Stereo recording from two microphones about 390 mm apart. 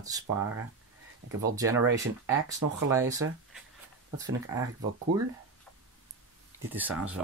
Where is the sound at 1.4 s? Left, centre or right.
Centre.